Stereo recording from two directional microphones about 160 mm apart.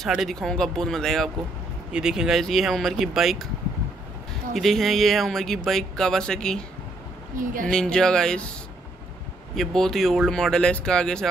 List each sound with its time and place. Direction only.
0.0 s speech: centre (ahead or behind)
4.6 s speech: centre (ahead or behind)
7.3 s speech: 55° right (ahead or behind)
7.7 s speech: 5° left (ahead or behind)
9.6 s speech: centre (ahead or behind)